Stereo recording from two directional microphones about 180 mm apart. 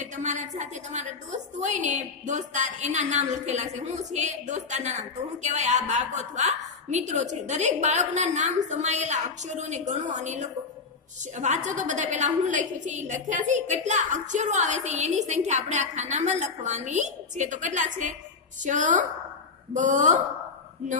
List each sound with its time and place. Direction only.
0.0 s a woman's voice: 40° right (ahead or behind)